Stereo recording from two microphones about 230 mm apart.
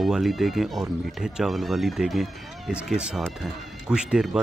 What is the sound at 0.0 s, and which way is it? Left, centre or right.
Speech, centre.